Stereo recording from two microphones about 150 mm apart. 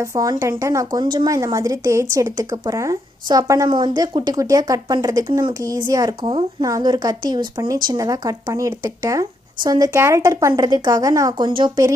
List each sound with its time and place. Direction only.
0.0 s speech: 20° right (ahead or behind)